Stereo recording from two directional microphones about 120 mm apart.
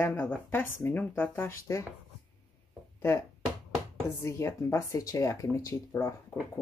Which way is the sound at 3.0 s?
20° left (ahead or behind).